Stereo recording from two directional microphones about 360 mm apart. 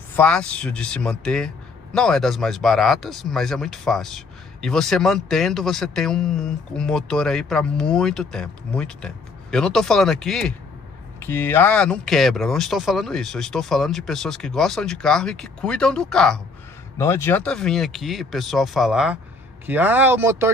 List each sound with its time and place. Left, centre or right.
0.1 s speech: centre